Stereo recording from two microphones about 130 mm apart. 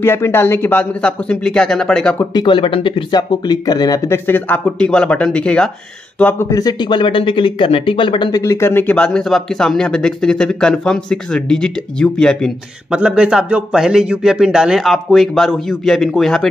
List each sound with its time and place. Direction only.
0.0 s speech: 15° left (ahead or behind)
2.3 s speech: 40° left (ahead or behind); by 6.4 s 10° left (ahead or behind)
6.5 s speech: 30° left (ahead or behind)
8.4 s speech: 25° left (ahead or behind); by 12.5 s 5° left (ahead or behind)
12.9 s a man's voice: 5° right (ahead or behind)